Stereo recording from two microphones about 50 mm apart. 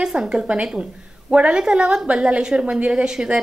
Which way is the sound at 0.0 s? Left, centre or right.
Centre.